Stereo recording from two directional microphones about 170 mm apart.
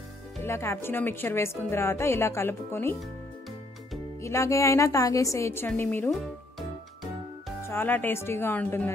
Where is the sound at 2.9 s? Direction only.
Centre (ahead or behind).